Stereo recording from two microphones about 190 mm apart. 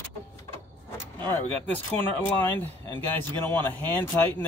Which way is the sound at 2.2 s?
10° left (ahead or behind).